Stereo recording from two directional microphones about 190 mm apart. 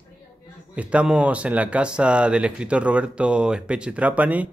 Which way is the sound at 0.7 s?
5° right (ahead or behind).